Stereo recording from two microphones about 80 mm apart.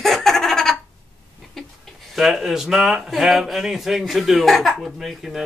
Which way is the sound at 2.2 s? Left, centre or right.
Centre.